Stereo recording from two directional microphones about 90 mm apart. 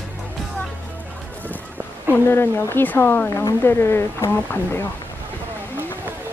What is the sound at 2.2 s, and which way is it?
Speech, 25° left (ahead or behind).